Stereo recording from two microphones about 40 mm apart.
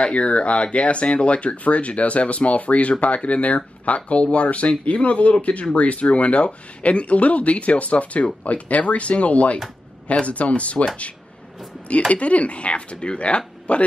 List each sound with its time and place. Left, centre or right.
0.0 s speech: left
12.1 s speech: left